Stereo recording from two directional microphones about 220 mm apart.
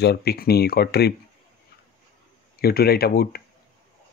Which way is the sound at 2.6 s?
45° left (ahead or behind).